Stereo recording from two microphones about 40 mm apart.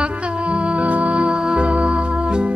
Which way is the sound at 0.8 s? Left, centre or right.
Right.